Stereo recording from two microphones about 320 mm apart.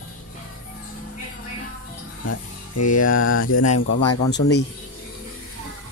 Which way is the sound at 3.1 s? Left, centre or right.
Left.